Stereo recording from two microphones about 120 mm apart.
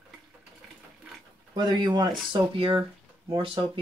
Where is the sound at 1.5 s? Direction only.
35° right (ahead or behind).